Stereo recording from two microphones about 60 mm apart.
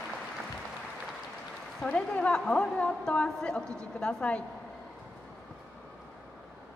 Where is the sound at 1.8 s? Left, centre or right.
Centre.